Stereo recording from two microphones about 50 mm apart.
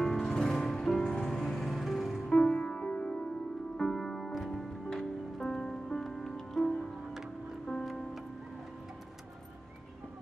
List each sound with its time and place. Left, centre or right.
0.0 s music: centre
2.3 s music: centre
3.7 s music: centre